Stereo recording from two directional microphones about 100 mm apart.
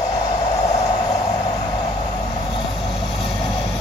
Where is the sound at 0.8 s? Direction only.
40° left (ahead or behind).